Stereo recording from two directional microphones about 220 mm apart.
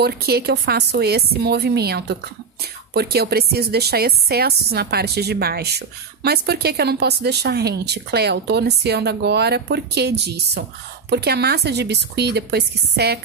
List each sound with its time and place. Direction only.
0.0 s a woman's voice: 45° right (ahead or behind)